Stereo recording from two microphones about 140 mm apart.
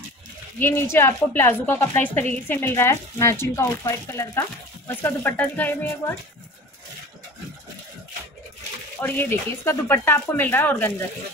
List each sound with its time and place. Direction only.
0.6 s speech: 15° left (ahead or behind)
9.0 s speech: 15° left (ahead or behind)